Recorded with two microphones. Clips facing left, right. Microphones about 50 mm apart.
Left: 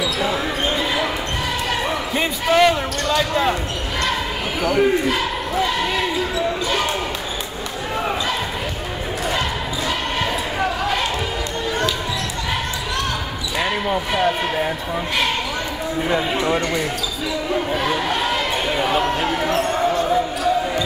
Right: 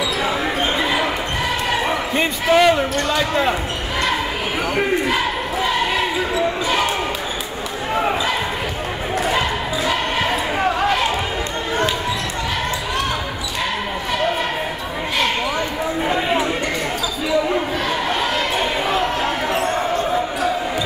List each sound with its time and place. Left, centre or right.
0.2 s basketball bounce: centre
2.1 s basketball bounce: centre
4.7 s a sound: centre